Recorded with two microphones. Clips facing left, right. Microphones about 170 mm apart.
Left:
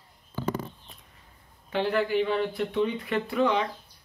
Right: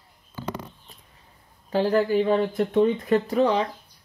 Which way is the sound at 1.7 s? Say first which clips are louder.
Right 5 dB; 40° right (ahead or behind).